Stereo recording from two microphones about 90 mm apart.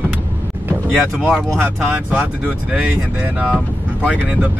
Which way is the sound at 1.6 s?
20° right (ahead or behind).